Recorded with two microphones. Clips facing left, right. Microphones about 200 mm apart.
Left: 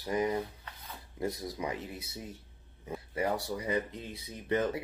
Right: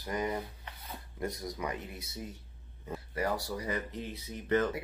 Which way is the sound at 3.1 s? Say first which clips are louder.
Left 1 dB; 20° left (ahead or behind).